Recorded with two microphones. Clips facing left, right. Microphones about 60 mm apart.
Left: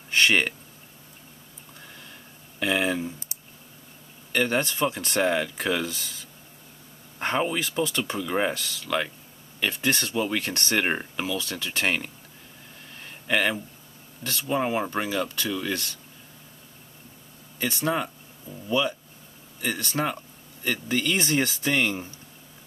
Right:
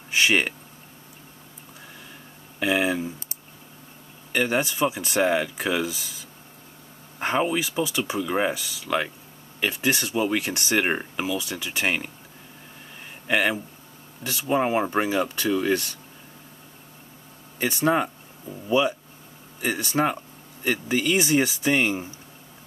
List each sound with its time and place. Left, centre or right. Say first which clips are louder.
0.1 s speech: even; centre
2.6 s speech: right 2 dB; centre
4.3 s speech: right 1 dB; centre
13.3 s speech: right 2 dB; centre
17.6 s speech: right 4 dB; centre